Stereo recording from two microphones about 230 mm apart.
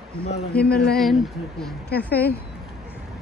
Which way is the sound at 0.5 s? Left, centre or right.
Centre.